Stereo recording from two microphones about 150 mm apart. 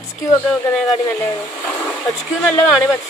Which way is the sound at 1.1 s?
20° left (ahead or behind).